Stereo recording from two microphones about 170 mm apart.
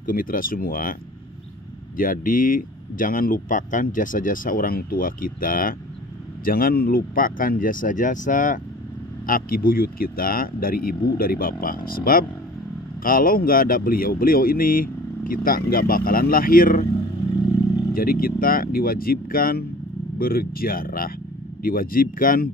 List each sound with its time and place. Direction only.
0.0 s speech: 55° left (ahead or behind)
2.0 s speech: 55° left (ahead or behind)
17.9 s speech: 60° left (ahead or behind)